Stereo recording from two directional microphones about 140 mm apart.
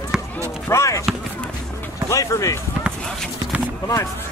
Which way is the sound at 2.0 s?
20° left (ahead or behind).